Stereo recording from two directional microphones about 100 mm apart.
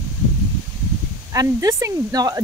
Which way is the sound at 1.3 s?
35° right (ahead or behind).